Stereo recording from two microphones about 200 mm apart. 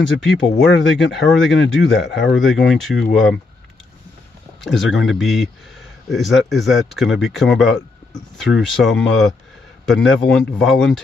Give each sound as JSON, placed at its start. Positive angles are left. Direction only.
{"t": 0.2, "sound": "speech", "side_deg": 0}
{"t": 1.9, "sound": "speech", "side_deg": 65}
{"t": 2.2, "sound": "speech", "side_deg": 0}
{"t": 4.6, "sound": "speech", "side_deg": 0}